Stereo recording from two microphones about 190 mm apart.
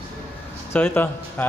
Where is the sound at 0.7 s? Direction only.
10° left (ahead or behind).